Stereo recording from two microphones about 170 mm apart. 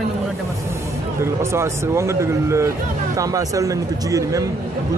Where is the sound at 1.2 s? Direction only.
15° right (ahead or behind).